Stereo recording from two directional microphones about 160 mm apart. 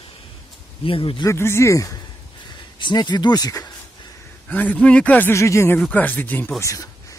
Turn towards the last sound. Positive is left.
turn(degrees=20)  # may be behind; listen again after turning